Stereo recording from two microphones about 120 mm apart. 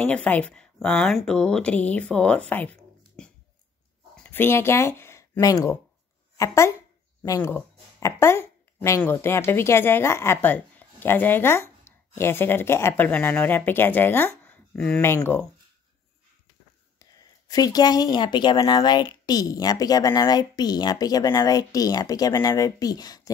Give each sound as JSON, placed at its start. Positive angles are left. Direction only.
{"t": 0.0, "sound": "speech", "side_deg": 10}
{"t": 17.0, "sound": "speech", "side_deg": 30}